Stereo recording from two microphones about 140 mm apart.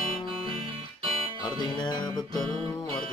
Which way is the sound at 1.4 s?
30° left (ahead or behind).